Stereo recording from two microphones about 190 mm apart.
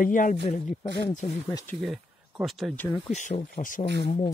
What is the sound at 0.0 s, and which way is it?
Speech, 45° left (ahead or behind).